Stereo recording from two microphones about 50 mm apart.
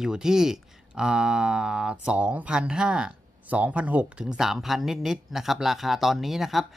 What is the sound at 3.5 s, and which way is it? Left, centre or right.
Speech, right.